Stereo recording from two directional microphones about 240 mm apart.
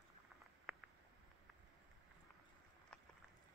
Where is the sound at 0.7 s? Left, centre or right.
Centre.